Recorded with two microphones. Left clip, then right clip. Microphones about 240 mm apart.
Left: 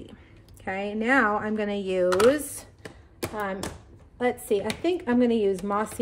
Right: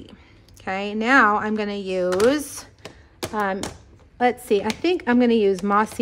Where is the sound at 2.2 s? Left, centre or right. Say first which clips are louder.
Right 1 dB; right.